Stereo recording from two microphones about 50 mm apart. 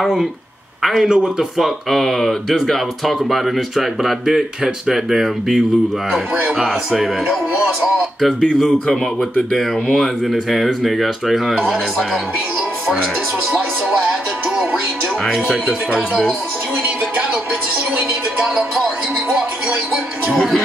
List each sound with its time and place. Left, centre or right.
0.0 s speech: centre
1.0 s a man's voice: centre
1.6 s speech: centre
6.6 s speech: centre
9.9 s speech: centre
15.2 s speech: centre
20.2 s speech: centre